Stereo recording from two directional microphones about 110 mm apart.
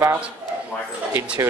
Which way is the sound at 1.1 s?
15° right (ahead or behind).